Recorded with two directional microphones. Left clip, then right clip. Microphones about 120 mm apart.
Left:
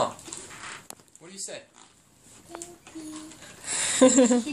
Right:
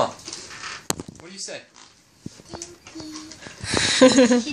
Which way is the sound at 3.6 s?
5° left (ahead or behind).